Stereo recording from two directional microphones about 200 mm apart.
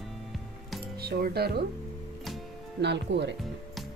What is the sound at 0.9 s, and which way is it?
Speech, 50° right (ahead or behind).